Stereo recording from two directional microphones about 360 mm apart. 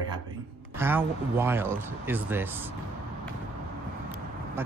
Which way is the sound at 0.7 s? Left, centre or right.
Centre.